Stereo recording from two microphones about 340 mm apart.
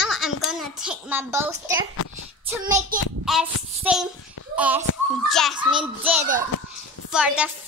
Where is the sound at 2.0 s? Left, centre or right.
Left.